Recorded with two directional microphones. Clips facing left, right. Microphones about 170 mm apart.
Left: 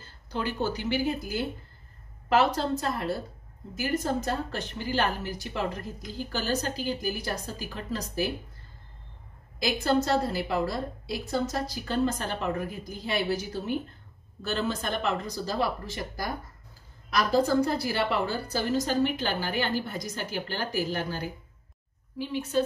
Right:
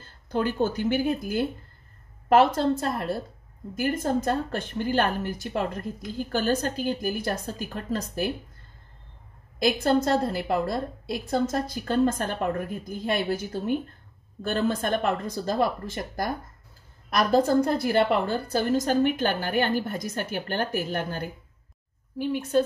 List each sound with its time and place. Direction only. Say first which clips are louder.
0.0 s a woman's voice: right 5 dB; 50° right (ahead or behind)
9.6 s a woman's voice: right 3 dB; 55° right (ahead or behind)